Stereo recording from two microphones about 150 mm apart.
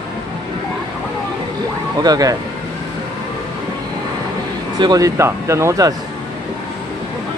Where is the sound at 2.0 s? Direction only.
25° right (ahead or behind).